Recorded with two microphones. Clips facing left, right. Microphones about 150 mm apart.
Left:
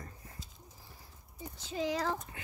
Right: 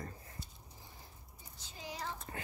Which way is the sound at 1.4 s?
90° left.